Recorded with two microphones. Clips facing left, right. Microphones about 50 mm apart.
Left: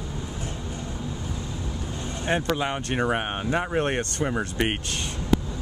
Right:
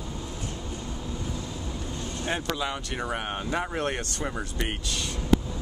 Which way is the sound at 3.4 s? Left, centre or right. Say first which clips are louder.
Left 4 dB; left.